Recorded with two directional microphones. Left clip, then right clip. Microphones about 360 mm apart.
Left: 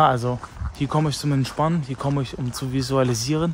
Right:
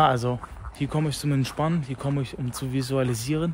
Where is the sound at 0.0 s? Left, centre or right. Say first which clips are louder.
Left 3 dB; centre.